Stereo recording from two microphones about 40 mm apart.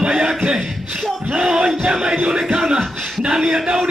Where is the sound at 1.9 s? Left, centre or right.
Centre.